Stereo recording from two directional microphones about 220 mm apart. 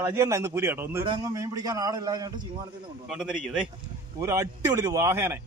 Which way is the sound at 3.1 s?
Centre (ahead or behind).